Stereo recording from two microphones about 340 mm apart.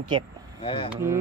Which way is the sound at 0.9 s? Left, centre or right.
Centre.